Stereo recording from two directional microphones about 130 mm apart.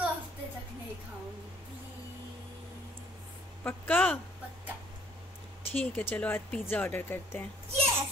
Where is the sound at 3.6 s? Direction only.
15° left (ahead or behind).